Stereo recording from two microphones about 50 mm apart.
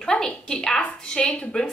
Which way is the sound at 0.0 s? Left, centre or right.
Centre.